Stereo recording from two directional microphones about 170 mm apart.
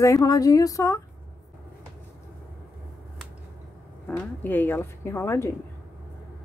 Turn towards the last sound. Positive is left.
turn(degrees=15)  # may be behind; listen again after turning